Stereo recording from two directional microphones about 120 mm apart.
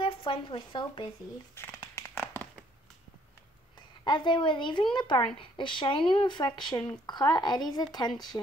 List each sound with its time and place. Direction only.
0.0 s speech: 45° left (ahead or behind)
1.5 s a sound: 20° left (ahead or behind)
4.0 s speech: 40° left (ahead or behind)